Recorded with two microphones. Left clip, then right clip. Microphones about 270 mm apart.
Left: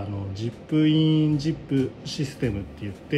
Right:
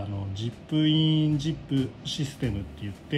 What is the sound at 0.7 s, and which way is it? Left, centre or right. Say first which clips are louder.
Speech: left 3 dB; centre.